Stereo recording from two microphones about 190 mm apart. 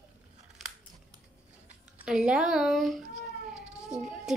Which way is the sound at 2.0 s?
5° right (ahead or behind).